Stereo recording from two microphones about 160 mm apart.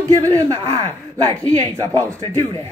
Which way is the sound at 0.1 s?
20° right (ahead or behind).